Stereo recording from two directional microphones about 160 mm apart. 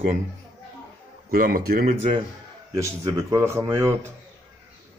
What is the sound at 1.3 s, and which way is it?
Speech, 70° right (ahead or behind).